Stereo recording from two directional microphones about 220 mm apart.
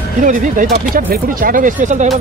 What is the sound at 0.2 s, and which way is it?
Speech, 35° right (ahead or behind).